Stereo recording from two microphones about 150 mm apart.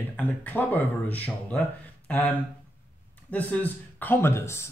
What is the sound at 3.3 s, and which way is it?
Speech, 10° left (ahead or behind).